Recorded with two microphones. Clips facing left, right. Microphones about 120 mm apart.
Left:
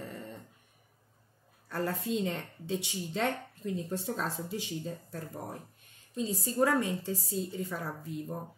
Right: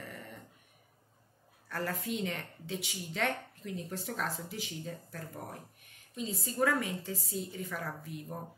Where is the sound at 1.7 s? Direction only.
25° left (ahead or behind).